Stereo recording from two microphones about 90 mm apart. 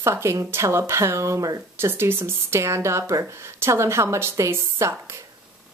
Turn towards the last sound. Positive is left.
turn(degrees=-30)  # may be behind; listen again after turning